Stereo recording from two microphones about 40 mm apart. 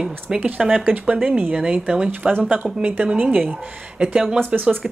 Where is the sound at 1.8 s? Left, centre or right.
Right.